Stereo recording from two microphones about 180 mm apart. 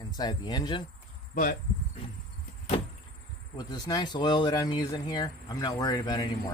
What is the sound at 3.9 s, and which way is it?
Speech, 20° left (ahead or behind).